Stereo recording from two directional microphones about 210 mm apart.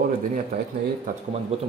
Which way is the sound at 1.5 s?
30° right (ahead or behind).